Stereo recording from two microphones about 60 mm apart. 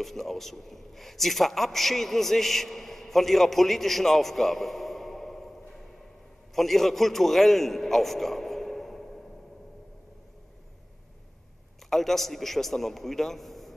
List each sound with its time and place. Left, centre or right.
0.0 s a man's voice: centre
11.9 s a man's voice: centre